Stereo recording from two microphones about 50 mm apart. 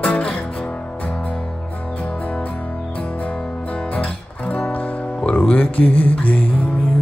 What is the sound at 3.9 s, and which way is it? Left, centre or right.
Music, left.